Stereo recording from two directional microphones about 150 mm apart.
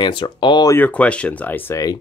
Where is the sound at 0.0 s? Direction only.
35° left (ahead or behind).